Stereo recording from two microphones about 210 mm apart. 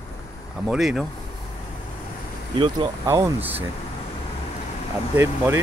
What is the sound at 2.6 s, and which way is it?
Speech, 20° right (ahead or behind).